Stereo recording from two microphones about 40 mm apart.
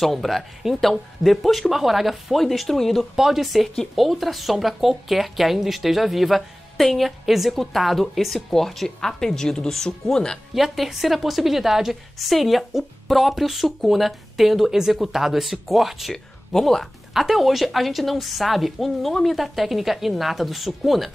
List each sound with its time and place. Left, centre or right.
0.0 s speech: centre
3.2 s a woman's voice: centre
10.5 s speech: centre
16.5 s a woman's voice: centre
17.1 s speech: centre